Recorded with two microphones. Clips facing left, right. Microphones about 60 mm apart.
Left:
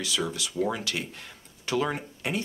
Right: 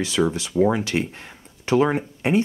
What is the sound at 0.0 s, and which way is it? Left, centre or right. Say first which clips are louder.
Speech: right 8 dB; right.